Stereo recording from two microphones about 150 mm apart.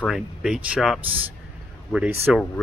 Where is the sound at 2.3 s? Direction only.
5° right (ahead or behind).